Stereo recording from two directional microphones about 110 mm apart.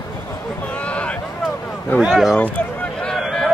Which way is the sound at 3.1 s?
Centre (ahead or behind).